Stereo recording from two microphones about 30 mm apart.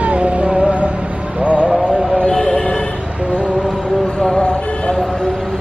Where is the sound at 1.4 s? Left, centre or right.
Right.